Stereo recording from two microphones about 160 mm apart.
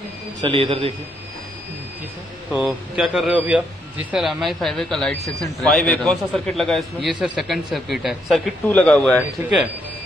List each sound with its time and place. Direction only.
0.4 s a man's voice: 35° right (ahead or behind)
2.5 s a man's voice: 5° right (ahead or behind)